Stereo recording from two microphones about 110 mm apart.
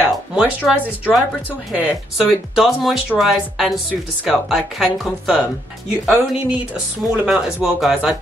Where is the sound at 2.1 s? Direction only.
Centre (ahead or behind).